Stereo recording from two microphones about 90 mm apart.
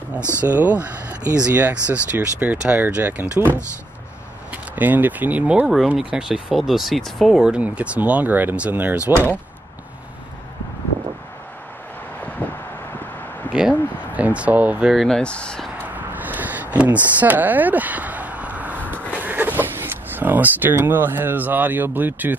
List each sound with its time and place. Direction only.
0.2 s speech: 30° left (ahead or behind)
0.5 s speech: 20° right (ahead or behind)
13.5 s a sound: 10° right (ahead or behind)
14.2 s speech: 15° right (ahead or behind)
14.9 s speech: 5° left (ahead or behind)
15.8 s a sound: 20° right (ahead or behind)